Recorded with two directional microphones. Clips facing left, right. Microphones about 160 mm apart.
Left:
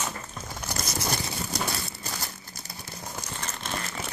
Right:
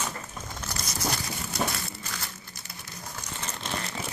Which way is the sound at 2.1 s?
35° left (ahead or behind).